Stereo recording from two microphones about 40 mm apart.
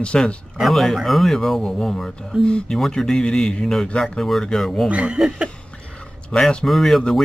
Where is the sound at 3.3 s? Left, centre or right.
Centre.